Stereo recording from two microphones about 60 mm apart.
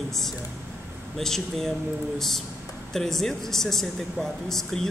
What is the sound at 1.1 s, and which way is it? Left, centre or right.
Speech, centre.